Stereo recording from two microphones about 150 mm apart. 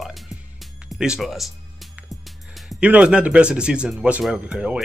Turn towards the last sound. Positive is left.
turn(degrees=-5)  # may be behind; listen again after turning